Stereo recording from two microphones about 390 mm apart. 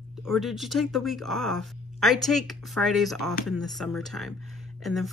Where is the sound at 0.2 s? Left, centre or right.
Centre.